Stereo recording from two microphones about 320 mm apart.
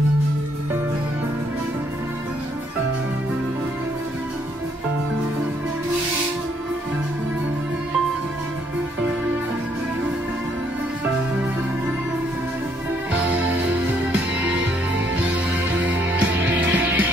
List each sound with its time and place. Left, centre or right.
13.3 s music: right
13.8 s music: centre
15.8 s music: centre